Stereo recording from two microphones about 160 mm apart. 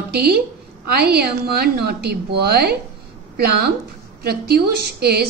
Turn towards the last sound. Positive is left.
turn(degrees=-80)